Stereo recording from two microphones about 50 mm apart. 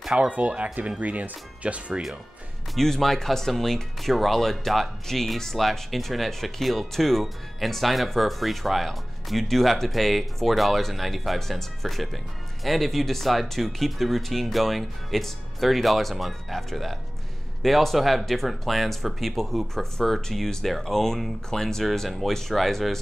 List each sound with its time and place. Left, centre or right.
0.0 s speech: centre
0.3 s speech: right
2.7 s speech: centre